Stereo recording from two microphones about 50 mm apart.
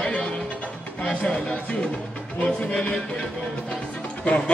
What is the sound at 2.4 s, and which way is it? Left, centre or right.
Music, left.